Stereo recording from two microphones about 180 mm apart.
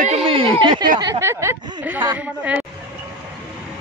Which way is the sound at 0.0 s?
35° right (ahead or behind).